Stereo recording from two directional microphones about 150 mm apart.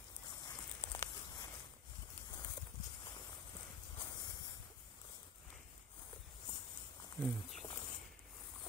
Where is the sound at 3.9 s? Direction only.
25° left (ahead or behind).